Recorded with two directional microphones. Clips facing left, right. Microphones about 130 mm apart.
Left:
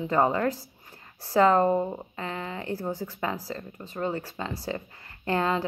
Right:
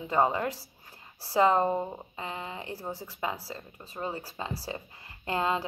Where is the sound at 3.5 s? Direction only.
10° right (ahead or behind).